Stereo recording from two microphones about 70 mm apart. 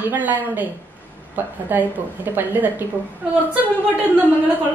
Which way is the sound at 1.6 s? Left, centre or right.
Right.